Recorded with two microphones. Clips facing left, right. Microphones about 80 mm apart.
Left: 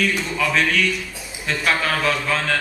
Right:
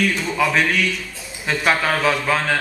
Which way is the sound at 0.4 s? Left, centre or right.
Centre.